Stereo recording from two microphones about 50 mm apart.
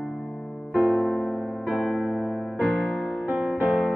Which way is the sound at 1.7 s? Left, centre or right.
Centre.